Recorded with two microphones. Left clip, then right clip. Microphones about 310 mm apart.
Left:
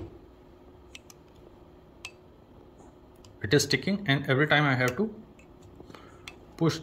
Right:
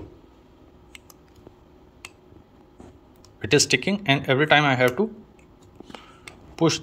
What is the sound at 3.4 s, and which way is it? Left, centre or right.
Speech, centre.